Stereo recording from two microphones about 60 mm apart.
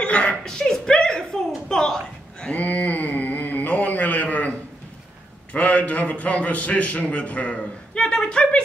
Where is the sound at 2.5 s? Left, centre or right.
Left.